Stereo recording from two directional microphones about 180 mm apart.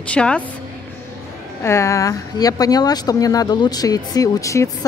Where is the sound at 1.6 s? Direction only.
15° left (ahead or behind).